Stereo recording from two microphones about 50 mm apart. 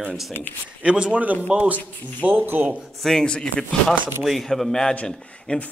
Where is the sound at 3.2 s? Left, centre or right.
Centre.